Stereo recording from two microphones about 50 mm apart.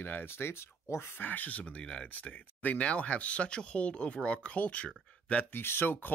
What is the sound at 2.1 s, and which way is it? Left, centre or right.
Speech, left.